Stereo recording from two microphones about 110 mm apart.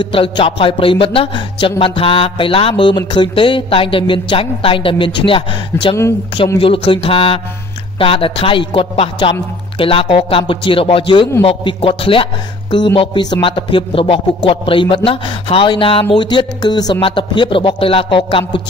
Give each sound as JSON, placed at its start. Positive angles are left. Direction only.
{"t": 0.0, "sound": "a man's voice", "side_deg": 50}